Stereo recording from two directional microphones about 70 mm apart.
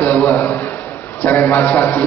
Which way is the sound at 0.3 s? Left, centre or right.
Left.